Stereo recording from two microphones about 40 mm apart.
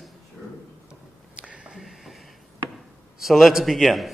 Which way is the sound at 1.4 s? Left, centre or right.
Right.